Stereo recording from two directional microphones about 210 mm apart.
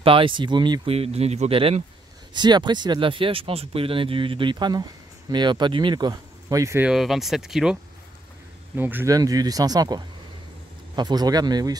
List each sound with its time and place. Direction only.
0.0 s speech: 25° right (ahead or behind)